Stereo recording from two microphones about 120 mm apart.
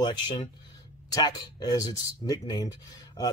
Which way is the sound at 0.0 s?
40° left (ahead or behind).